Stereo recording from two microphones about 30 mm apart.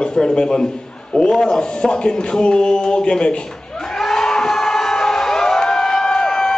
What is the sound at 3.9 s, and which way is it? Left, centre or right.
Crowd, centre.